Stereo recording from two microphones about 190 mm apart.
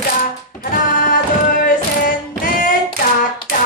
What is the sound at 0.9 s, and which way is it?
Music, 45° left (ahead or behind).